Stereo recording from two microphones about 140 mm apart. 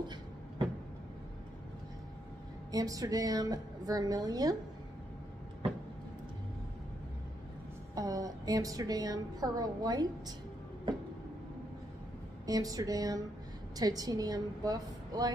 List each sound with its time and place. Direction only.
2.7 s a woman's voice: 25° right (ahead or behind)
7.9 s a woman's voice: 25° right (ahead or behind)
12.4 s a woman's voice: 25° right (ahead or behind)